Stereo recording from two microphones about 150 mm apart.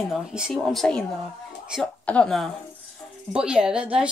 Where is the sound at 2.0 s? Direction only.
5° left (ahead or behind).